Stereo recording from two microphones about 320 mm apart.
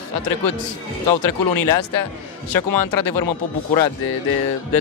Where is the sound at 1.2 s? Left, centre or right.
Left.